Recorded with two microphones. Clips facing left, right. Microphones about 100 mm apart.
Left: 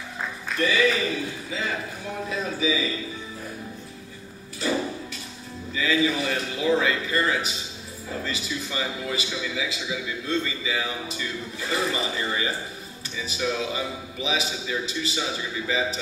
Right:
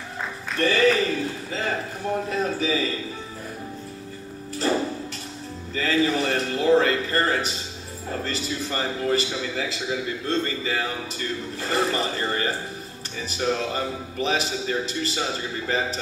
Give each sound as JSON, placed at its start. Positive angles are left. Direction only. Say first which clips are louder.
{"t": 0.6, "sound": "a man's voice", "louder": "right 3 dB", "side_deg": -45}
{"t": 5.8, "sound": "a sound", "louder": "right 2 dB", "side_deg": -45}
{"t": 8.2, "sound": "a man's voice", "louder": "right 2 dB", "side_deg": -40}